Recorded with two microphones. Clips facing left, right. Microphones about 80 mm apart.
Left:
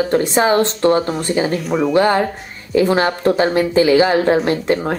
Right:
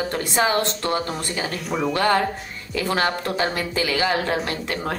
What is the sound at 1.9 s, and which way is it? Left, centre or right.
Speech, left.